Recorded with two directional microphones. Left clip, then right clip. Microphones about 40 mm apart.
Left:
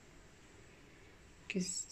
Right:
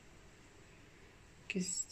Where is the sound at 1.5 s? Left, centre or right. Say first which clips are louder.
Even; left.